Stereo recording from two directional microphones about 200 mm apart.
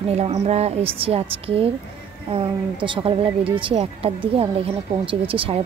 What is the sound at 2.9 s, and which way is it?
A woman's voice, 25° right (ahead or behind).